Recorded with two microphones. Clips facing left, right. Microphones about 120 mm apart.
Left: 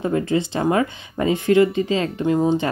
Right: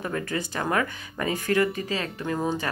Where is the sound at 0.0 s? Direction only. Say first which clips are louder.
Left 9 dB; 25° left (ahead or behind).